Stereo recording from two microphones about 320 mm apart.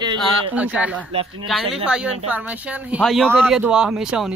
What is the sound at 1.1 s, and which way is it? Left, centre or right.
Speech, centre.